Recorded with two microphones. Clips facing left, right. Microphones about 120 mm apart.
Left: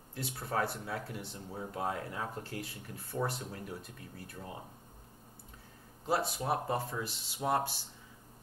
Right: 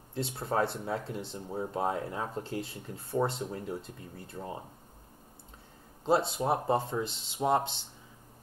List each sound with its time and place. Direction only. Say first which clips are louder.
0.1 s speech: right 5 dB; 25° right (ahead or behind)
6.0 s speech: right 5 dB; 25° right (ahead or behind)